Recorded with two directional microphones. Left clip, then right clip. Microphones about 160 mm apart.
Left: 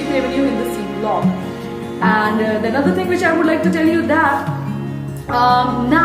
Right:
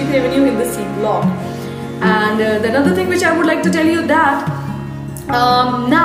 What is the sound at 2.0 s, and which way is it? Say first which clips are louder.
A woman's voice: right 1 dB; 20° right (ahead or behind).